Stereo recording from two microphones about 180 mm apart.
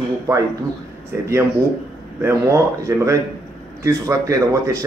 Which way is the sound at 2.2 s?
15° right (ahead or behind).